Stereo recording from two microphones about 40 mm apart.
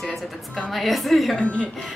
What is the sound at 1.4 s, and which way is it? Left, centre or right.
Speech, left.